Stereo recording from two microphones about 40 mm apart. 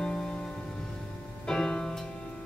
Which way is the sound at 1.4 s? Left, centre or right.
Centre.